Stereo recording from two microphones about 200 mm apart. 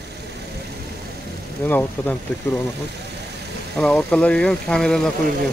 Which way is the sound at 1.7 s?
10° left (ahead or behind).